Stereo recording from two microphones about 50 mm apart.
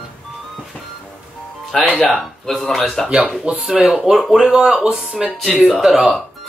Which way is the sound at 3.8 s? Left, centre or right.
Centre.